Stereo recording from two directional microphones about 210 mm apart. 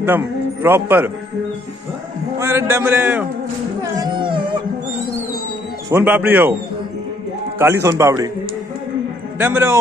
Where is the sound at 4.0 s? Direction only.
20° right (ahead or behind).